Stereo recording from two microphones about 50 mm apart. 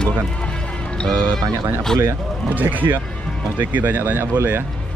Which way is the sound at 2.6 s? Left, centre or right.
Right.